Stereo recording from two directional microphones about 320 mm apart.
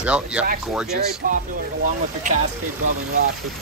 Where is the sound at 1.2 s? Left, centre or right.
Right.